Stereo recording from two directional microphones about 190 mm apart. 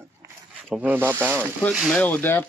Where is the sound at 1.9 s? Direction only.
10° left (ahead or behind).